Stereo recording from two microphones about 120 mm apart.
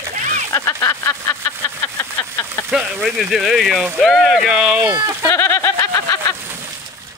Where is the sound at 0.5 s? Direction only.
25° left (ahead or behind).